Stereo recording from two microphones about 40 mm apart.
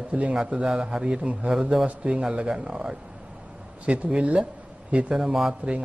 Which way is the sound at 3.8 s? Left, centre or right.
Right.